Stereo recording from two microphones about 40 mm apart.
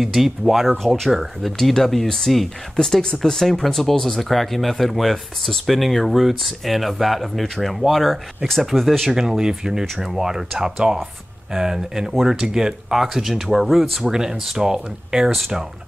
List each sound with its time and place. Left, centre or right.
0.0 s speech: centre
0.8 s speech: centre
9.1 s speech: centre
9.9 s speech: centre
10.2 s speech: centre
14.1 s speech: centre